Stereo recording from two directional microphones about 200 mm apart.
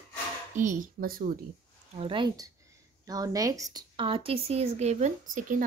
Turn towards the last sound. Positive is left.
turn(degrees=-35)  # may be behind; listen again after turning